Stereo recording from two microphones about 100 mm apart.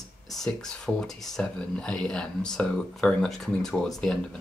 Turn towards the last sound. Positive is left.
turn(degrees=5)  # may be behind; listen again after turning